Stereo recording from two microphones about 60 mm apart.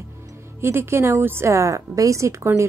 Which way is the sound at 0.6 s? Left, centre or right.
Right.